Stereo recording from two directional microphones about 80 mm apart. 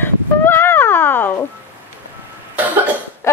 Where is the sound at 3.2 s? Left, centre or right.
Left.